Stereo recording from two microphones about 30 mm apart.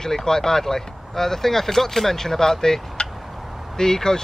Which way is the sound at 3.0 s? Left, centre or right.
Left.